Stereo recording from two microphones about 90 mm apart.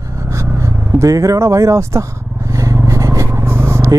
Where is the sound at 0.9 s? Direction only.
35° right (ahead or behind).